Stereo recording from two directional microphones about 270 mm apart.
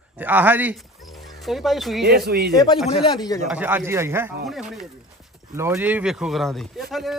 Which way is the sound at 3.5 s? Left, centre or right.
Centre.